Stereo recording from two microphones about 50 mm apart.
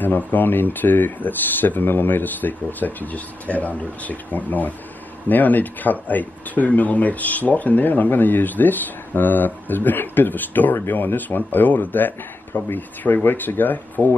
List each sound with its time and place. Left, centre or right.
0.0 s speech: left